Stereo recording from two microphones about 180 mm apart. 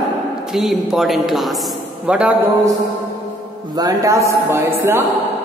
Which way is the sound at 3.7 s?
20° right (ahead or behind).